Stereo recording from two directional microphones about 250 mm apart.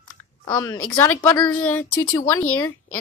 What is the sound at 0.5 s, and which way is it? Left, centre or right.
Speech, centre.